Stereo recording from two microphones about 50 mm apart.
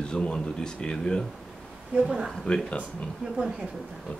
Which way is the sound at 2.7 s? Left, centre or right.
Left.